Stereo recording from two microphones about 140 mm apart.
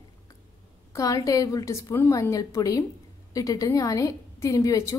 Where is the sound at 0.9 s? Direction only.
25° left (ahead or behind).